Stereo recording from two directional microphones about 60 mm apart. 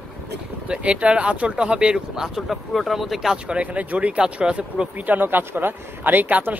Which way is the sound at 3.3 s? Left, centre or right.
Centre.